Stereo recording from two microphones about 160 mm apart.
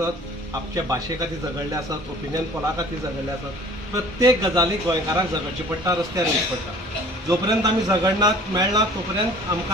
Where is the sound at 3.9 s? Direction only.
20° right (ahead or behind).